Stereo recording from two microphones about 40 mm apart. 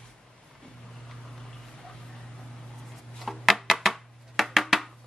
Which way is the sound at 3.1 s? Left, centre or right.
Centre.